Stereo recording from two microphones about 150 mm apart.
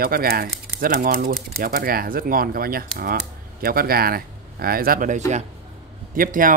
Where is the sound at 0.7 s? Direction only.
75° right (ahead or behind).